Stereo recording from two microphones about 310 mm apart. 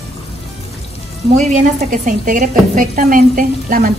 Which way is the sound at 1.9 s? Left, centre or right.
Right.